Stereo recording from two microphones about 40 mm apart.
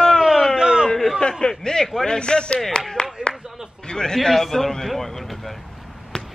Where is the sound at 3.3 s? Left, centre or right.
Centre.